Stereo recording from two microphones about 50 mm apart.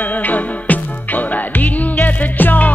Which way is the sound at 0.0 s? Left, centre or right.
Left.